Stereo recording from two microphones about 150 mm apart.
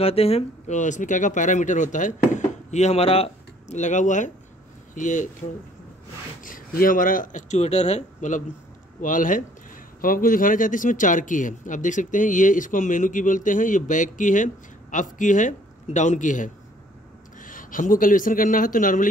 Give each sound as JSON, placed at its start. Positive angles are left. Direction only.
{"t": 0.0, "sound": "speech", "side_deg": 40}
{"t": 6.4, "sound": "speech", "side_deg": 70}